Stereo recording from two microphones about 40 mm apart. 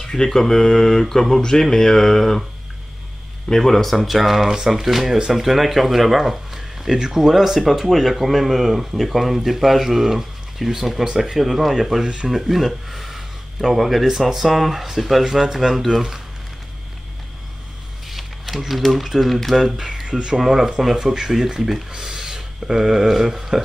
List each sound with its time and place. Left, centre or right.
0.0 s speech: centre
3.4 s speech: centre
4.0 s speech: centre
11.3 s speech: centre
18.0 s a sound: centre
18.8 s speech: centre